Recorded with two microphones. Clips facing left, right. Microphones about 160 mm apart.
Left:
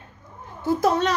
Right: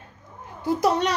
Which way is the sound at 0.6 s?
15° right (ahead or behind).